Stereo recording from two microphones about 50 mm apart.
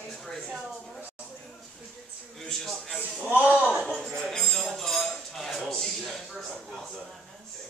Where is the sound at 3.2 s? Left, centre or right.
Right.